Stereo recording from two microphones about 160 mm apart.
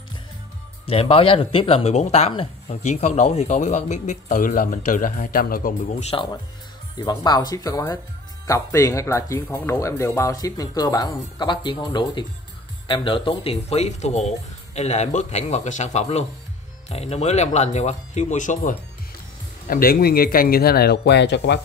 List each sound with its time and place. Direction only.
0.8 s speech: 35° left (ahead or behind); by 6.0 s 60° left (ahead or behind)
6.0 s speech: 30° left (ahead or behind); by 18.8 s 55° left (ahead or behind)
19.7 s speech: 70° left (ahead or behind); by 21.5 s 90° left